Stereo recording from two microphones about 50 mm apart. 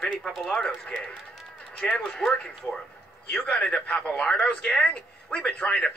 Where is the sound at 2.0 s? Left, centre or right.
Centre.